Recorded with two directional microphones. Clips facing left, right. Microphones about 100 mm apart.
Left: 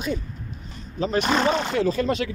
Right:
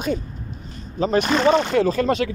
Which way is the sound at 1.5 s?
55° right (ahead or behind).